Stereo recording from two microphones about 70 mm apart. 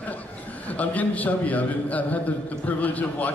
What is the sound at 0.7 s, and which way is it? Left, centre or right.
A man's voice, left.